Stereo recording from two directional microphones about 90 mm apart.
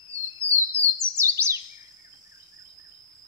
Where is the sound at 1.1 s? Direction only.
30° right (ahead or behind).